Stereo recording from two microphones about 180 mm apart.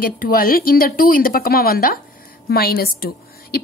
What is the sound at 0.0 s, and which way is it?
A woman's voice, 55° left (ahead or behind).